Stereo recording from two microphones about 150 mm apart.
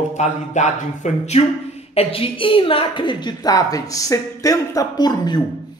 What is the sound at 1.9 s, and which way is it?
A woman's voice, 40° left (ahead or behind).